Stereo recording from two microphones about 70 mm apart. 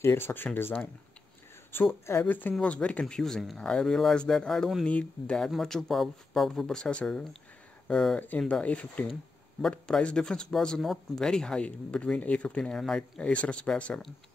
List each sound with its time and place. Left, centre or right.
0.0 s speech: left
2.2 s speech: left
5.5 s speech: centre